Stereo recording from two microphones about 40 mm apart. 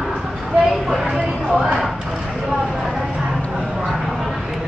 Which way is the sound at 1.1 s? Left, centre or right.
Centre.